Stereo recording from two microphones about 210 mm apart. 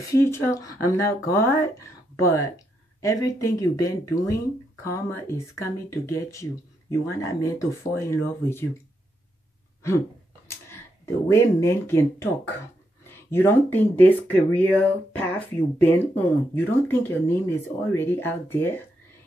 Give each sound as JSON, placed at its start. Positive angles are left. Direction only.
{"t": 0.1, "sound": "speech", "side_deg": 15}
{"t": 11.2, "sound": "speech", "side_deg": 15}